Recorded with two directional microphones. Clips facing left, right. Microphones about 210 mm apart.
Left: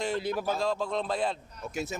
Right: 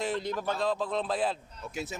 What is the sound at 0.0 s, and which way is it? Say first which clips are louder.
A man's voice: left 1 dB; 5° left (ahead or behind).